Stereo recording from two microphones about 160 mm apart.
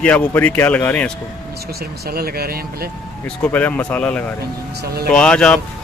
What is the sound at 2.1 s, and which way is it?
Speech, 70° right (ahead or behind).